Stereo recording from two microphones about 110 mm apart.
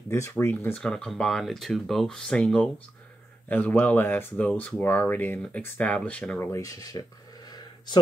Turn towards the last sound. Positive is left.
turn(degrees=40)  # may be behind; listen again after turning